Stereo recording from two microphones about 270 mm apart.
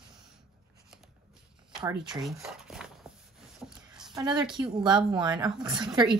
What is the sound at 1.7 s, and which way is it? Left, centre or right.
Speech, centre.